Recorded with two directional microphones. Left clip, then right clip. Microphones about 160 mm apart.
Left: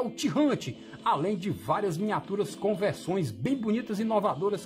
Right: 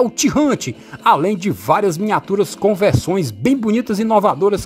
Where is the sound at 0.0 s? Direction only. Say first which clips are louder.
Right 12 dB; 40° right (ahead or behind).